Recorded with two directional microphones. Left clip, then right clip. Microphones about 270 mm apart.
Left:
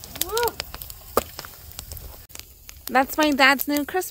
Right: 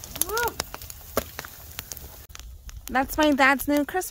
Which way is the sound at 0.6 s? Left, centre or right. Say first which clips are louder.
Right 1 dB; centre.